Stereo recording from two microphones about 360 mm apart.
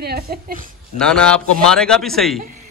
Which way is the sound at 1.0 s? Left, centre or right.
Centre.